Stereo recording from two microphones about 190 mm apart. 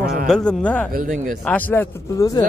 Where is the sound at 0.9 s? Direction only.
45° right (ahead or behind).